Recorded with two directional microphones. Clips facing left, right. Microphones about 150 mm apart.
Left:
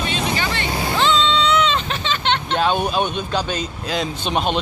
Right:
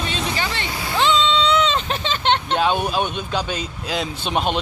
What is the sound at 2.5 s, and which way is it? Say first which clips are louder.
A man's voice: left 1 dB; 5° right (ahead or behind).